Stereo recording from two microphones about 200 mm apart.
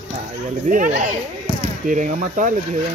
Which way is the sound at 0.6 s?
40° right (ahead or behind).